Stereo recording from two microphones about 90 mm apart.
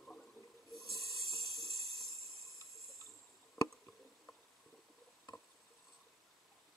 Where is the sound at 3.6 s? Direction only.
5° left (ahead or behind).